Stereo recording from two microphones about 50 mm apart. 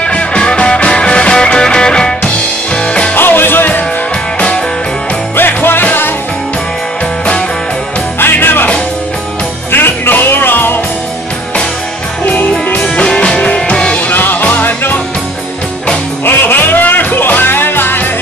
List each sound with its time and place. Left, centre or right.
0.0 s music: left
3.2 s music: left
5.6 s music: left
8.2 s music: left
9.7 s music: left
12.3 s music: left
12.9 s music: centre
13.9 s music: left
16.3 s music: left